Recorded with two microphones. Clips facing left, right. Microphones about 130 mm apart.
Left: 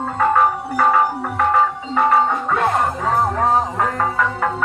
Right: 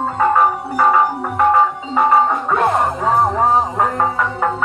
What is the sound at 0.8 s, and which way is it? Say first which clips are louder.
Music: right 2 dB; 15° right (ahead or behind).